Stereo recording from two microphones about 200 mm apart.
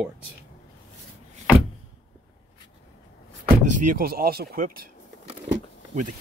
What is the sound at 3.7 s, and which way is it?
Speech, 45° right (ahead or behind).